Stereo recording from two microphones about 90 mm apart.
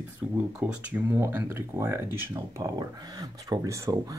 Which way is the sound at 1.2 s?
25° right (ahead or behind).